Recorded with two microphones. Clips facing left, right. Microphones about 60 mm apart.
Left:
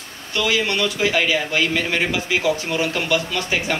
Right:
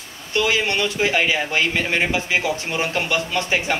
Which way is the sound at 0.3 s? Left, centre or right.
Right.